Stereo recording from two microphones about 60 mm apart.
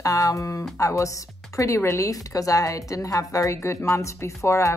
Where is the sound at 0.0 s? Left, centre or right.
Left.